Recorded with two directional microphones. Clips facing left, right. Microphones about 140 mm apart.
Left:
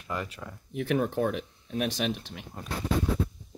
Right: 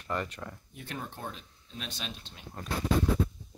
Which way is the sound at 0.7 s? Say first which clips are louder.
Left 15 dB; 80° left.